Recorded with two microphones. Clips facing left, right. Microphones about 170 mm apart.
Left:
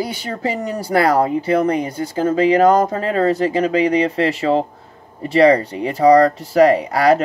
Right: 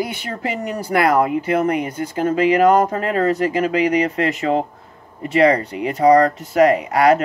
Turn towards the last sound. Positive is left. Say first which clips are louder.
# left 1 dB
turn(degrees=35)  # may be behind; listen again after turning